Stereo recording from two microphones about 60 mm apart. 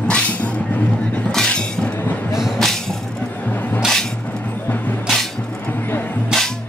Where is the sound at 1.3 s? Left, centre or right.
Centre.